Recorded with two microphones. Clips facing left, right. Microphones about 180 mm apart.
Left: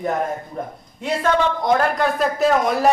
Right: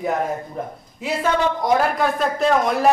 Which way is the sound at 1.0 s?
10° right (ahead or behind).